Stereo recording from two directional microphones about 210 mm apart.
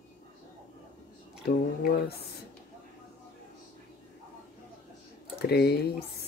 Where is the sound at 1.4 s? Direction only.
45° left (ahead or behind).